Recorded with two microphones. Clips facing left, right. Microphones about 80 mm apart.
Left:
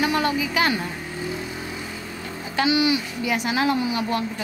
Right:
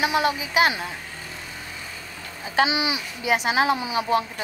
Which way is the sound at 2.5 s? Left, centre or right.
Right.